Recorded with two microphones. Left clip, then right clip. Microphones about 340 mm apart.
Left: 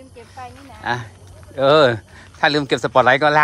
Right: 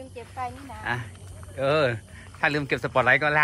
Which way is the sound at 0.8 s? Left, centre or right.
Centre.